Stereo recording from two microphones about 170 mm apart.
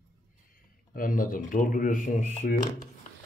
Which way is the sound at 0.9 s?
55° left (ahead or behind).